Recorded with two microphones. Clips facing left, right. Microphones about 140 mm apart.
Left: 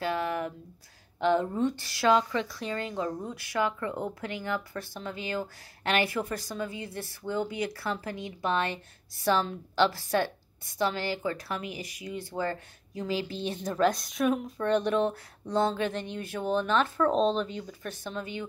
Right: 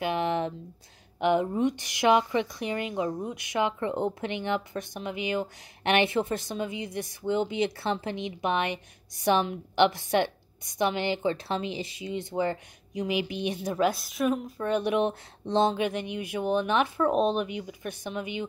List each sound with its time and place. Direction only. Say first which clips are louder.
0.0 s speech: right 3 dB; 20° right (ahead or behind)